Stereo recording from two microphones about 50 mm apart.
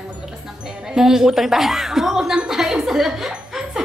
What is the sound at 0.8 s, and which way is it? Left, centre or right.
A woman's voice, centre.